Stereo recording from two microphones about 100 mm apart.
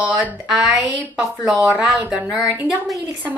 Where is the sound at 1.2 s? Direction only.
5° right (ahead or behind).